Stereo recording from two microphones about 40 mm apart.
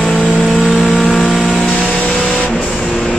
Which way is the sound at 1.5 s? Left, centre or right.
Left.